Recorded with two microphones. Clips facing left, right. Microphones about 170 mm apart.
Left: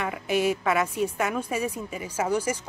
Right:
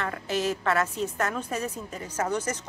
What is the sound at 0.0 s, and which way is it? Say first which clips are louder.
Speech: left 3 dB; 10° left (ahead or behind).